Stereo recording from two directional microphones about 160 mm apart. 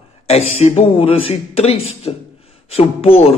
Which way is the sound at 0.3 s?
40° left (ahead or behind).